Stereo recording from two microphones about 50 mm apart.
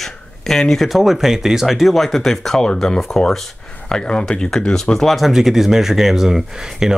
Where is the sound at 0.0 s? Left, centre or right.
Centre.